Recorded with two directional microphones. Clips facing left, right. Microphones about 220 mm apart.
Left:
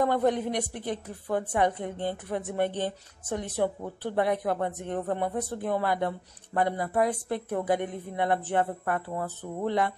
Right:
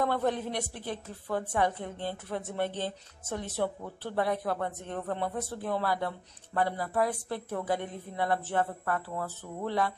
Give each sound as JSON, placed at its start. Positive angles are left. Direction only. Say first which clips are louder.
{"t": 0.0, "sound": "a woman's voice", "louder": "left 4 dB", "side_deg": 15}